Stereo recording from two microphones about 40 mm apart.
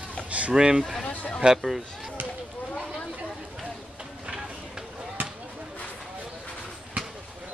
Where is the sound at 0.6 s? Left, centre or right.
Centre.